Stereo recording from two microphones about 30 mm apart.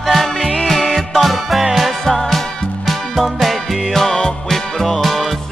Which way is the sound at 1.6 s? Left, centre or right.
Centre.